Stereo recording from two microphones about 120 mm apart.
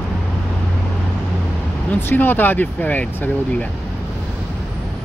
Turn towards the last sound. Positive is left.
turn(degrees=15)  # may be behind; listen again after turning